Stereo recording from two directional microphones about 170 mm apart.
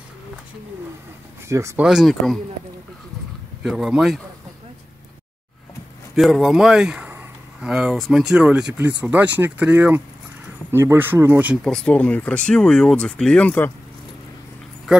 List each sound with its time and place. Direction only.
1.5 s speech: 15° right (ahead or behind)
1.8 s speech: 5° right (ahead or behind)
3.6 s speech: centre (ahead or behind)
6.1 s speech: centre (ahead or behind)
11.6 s speech: 5° left (ahead or behind)
14.9 s speech: 5° right (ahead or behind)